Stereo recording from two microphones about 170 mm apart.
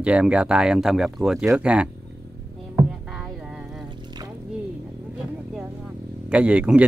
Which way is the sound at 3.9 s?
25° right (ahead or behind).